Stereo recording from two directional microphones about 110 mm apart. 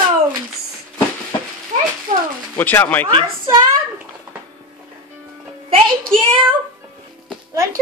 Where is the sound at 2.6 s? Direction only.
15° left (ahead or behind).